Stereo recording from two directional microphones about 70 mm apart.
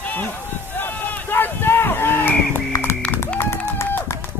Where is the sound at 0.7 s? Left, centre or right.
Left.